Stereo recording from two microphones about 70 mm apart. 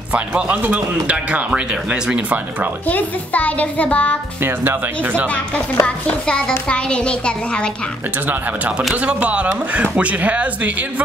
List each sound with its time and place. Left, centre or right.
0.1 s a man's voice: right
2.9 s a child's voice: left
4.4 s a man's voice: right
5.3 s speech: centre
9.0 s a man's voice: centre